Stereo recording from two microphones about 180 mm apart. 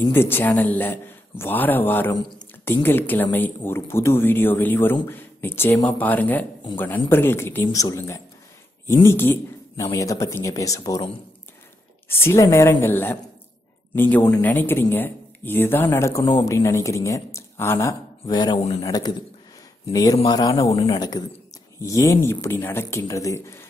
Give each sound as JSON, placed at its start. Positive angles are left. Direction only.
{"t": 0.1, "sound": "speech", "side_deg": 10}